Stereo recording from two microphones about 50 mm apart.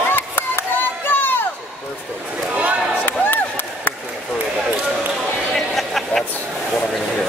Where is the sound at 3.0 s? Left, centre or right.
Left.